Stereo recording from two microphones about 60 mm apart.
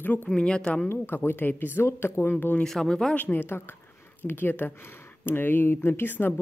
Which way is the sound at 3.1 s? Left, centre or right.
Left.